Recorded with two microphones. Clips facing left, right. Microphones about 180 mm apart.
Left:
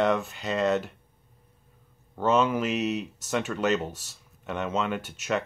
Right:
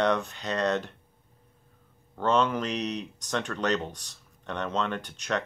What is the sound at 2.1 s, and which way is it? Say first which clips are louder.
Speech: left 2 dB; 5° left (ahead or behind).